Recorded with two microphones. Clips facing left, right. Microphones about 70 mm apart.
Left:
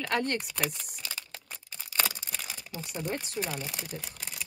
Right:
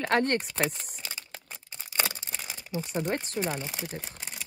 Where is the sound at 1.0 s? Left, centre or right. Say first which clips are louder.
Even; right.